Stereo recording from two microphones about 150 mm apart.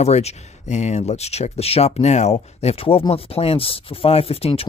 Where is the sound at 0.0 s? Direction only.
45° left (ahead or behind).